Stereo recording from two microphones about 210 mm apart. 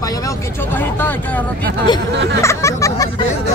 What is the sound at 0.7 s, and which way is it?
Speech, 10° left (ahead or behind).